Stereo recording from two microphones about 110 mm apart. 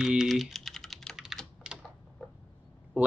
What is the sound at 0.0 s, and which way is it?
Typing, 5° right (ahead or behind).